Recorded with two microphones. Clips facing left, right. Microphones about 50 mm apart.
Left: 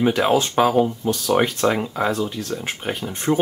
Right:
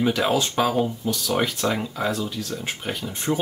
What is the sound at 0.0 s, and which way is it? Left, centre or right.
Speech, left.